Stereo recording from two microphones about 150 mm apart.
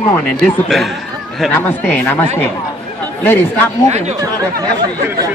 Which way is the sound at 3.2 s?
15° left (ahead or behind).